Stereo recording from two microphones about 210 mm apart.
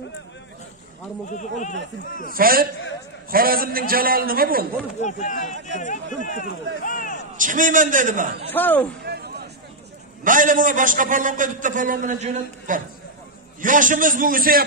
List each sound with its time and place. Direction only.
1.3 s speech: 35° left (ahead or behind)
2.3 s a man's voice: 45° right (ahead or behind)
5.0 s speech: 35° left (ahead or behind)
7.3 s a man's voice: 40° right (ahead or behind)
8.5 s a man's voice: 10° left (ahead or behind)
9.0 s a sound: 50° right (ahead or behind)
10.2 s a man's voice: 40° right (ahead or behind)